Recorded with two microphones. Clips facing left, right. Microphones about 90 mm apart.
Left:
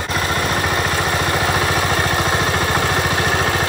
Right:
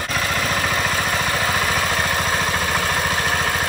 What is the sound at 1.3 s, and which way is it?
Vehicle, 20° left (ahead or behind).